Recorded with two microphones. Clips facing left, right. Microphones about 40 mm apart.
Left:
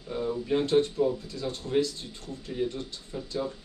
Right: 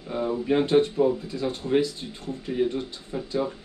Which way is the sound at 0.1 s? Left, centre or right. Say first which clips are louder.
Right 4 dB; right.